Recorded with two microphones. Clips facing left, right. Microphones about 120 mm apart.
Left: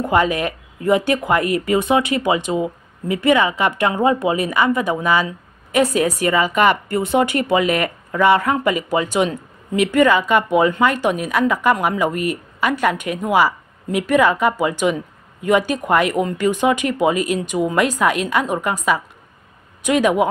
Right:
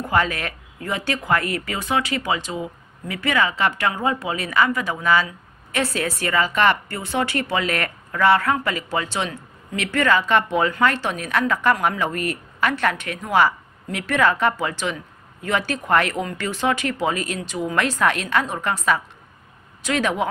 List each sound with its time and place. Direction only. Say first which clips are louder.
0.0 s speech: left 5 dB; 15° left (ahead or behind)